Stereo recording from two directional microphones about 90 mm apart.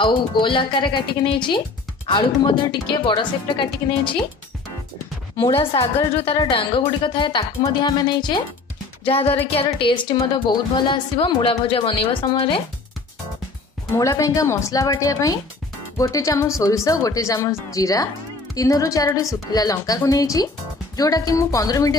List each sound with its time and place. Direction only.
0.0 s a woman's voice: 65° left (ahead or behind)
5.6 s a woman's voice: 90° left; by 8.5 s 55° left (ahead or behind)
9.0 s a woman's voice: 90° left
13.9 s speech: 40° left (ahead or behind)